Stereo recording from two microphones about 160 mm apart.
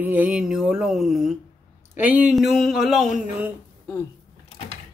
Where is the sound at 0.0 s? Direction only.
10° right (ahead or behind).